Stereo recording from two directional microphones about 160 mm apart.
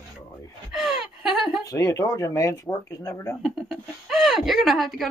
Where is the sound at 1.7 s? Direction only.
20° left (ahead or behind).